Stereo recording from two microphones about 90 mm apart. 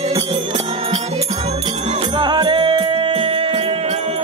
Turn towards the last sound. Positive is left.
turn(degrees=-90)